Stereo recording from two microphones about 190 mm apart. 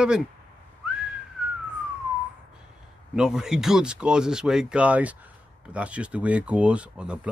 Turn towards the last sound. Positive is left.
turn(degrees=-5)  # may be behind; listen again after turning